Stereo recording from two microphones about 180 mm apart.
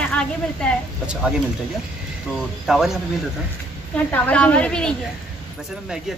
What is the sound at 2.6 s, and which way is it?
A woman's voice, centre (ahead or behind).